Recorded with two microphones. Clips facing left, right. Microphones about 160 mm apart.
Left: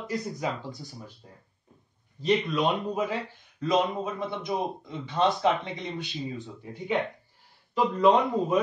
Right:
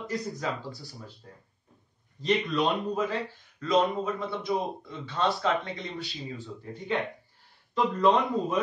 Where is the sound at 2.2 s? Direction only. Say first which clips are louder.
Left 1 dB; 10° left (ahead or behind).